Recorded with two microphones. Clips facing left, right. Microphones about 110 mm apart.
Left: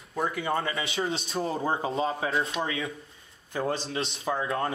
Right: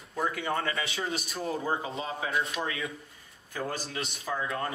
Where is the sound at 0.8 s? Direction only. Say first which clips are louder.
Left 3 dB; 25° left (ahead or behind).